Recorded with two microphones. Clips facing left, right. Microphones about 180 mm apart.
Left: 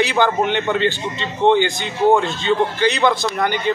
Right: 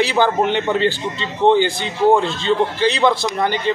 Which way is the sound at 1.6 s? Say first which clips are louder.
Right 1 dB; 30° right (ahead or behind).